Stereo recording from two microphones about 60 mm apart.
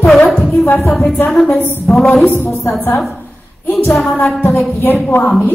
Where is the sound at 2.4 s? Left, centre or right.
Left.